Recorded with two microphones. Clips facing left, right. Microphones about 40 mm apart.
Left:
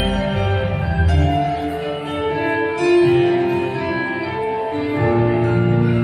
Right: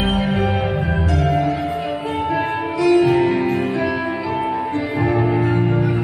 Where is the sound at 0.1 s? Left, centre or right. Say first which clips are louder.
Right 1 dB; centre.